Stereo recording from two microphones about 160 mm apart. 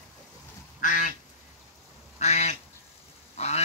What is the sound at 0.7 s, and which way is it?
Duck, 55° left (ahead or behind).